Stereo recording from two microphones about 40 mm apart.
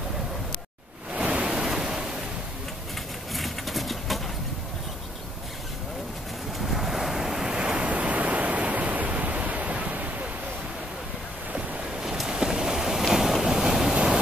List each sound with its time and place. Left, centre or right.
1.1 s waves: right
3.3 s a sound: centre
6.6 s waves: centre; by 10.2 s right
12.3 s waves: centre